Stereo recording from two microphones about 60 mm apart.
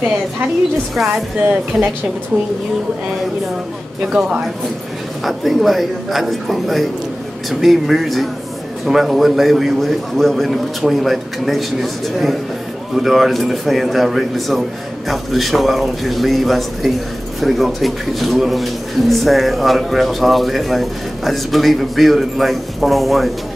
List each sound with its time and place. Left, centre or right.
0.9 s a man's voice: centre
1.5 s a woman's voice: centre
4.0 s a woman's voice: centre